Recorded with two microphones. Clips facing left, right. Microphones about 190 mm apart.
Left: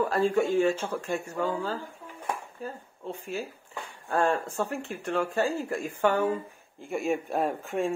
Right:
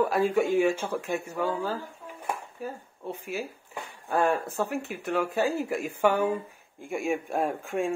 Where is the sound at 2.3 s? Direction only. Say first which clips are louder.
Right 1 dB; 10° right (ahead or behind).